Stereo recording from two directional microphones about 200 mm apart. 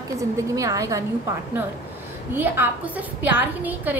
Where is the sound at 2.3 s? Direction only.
10° right (ahead or behind).